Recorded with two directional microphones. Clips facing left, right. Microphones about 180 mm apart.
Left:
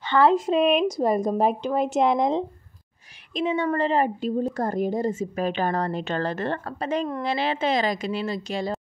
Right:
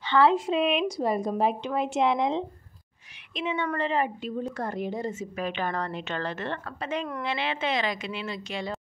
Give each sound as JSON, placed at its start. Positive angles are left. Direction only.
{"t": 0.0, "sound": "a woman's voice", "side_deg": 45}